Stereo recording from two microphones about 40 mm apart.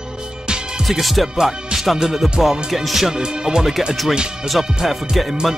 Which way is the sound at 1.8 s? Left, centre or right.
Centre.